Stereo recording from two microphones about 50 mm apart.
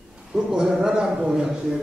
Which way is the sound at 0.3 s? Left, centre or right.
Centre.